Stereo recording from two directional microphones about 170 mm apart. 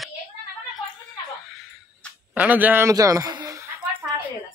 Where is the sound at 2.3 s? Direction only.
10° right (ahead or behind).